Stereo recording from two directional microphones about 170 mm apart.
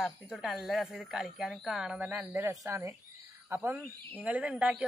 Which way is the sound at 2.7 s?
15° right (ahead or behind).